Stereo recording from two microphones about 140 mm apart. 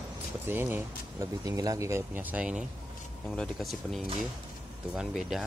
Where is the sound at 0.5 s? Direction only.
15° right (ahead or behind).